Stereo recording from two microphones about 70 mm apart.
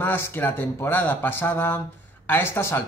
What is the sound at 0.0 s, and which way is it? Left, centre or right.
Speech, left.